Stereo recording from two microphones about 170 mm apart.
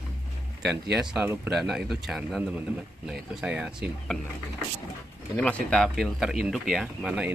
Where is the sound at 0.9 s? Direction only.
5° right (ahead or behind).